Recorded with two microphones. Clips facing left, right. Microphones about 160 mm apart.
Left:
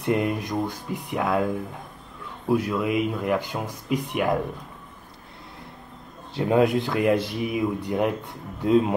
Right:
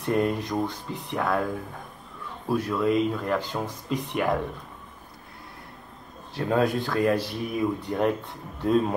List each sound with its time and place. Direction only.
0.0 s speech: 15° left (ahead or behind)
6.3 s speech: 15° left (ahead or behind)